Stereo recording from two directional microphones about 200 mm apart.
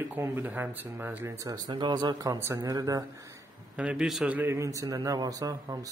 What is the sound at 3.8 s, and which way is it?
Speech, 5° right (ahead or behind).